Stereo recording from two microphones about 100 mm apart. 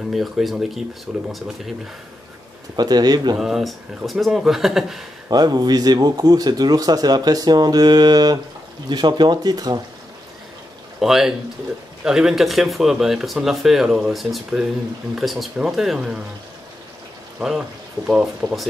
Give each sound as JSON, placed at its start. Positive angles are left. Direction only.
{"t": 0.1, "sound": "speech", "side_deg": 0}
{"t": 2.7, "sound": "speech", "side_deg": -45}
{"t": 3.3, "sound": "speech", "side_deg": -5}
{"t": 5.3, "sound": "speech", "side_deg": -40}
{"t": 11.0, "sound": "speech", "side_deg": -5}
{"t": 17.4, "sound": "speech", "side_deg": -5}